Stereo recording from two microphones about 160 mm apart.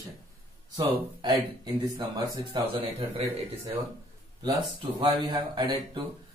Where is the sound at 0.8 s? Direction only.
25° right (ahead or behind).